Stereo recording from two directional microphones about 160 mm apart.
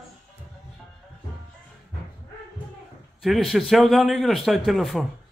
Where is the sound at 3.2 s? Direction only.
Centre (ahead or behind).